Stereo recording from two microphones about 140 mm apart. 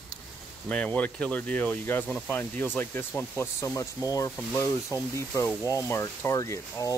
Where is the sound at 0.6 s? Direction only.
10° left (ahead or behind).